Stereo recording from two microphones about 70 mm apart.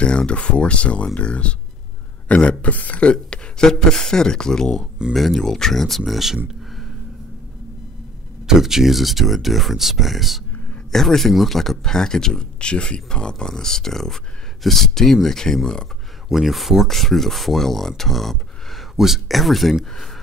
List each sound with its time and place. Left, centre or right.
0.0 s speech: centre
8.5 s speech: centre
16.3 s speech: centre